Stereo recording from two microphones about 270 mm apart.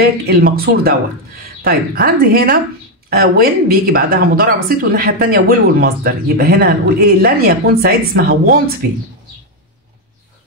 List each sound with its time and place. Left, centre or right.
0.0 s speech: right